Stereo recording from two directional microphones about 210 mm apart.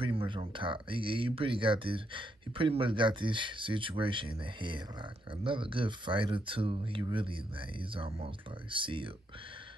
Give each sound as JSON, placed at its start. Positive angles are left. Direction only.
{"t": 0.0, "sound": "speech", "side_deg": -25}